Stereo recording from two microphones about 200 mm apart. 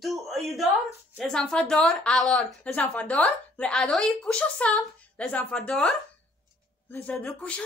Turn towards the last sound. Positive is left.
turn(degrees=5)  # may be behind; listen again after turning